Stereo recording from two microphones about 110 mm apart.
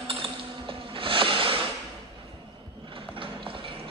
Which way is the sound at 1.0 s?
55° right (ahead or behind).